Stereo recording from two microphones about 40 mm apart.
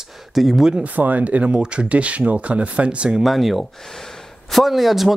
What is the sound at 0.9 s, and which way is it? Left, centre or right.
Speech, right.